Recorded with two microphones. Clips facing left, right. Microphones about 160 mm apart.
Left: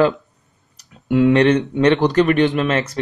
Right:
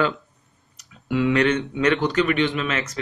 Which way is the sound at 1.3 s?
35° left (ahead or behind).